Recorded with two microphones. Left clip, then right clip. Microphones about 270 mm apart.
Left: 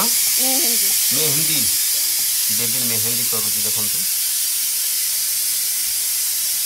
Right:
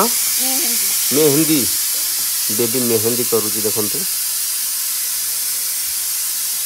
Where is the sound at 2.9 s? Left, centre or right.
Right.